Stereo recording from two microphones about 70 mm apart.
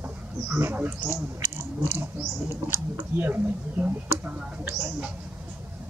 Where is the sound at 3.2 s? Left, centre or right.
Right.